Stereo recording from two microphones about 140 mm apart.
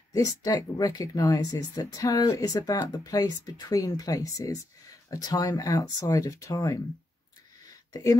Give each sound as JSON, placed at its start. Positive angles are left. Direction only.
{"t": 0.1, "sound": "speech", "side_deg": 25}
{"t": 7.9, "sound": "speech", "side_deg": 25}